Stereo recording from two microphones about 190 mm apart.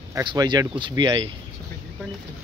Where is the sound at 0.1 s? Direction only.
20° right (ahead or behind).